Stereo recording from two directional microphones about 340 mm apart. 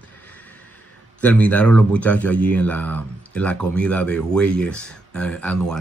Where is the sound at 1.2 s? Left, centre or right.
Centre.